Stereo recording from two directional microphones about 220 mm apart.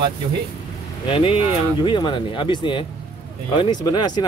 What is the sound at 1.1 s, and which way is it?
Speech, 25° left (ahead or behind).